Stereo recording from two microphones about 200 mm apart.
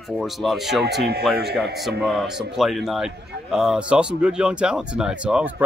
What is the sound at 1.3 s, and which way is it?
Speech, 55° right (ahead or behind).